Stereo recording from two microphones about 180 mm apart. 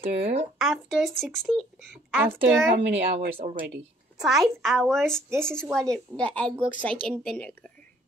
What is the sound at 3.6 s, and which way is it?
A woman's voice, 5° right (ahead or behind).